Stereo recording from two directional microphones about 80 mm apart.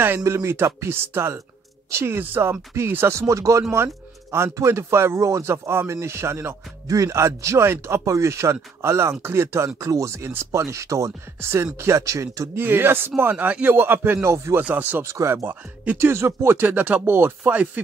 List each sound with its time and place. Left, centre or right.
0.2 s speech: right
12.5 s speech: right
14.6 s speech: right
17.0 s speech: right
17.5 s a sound: centre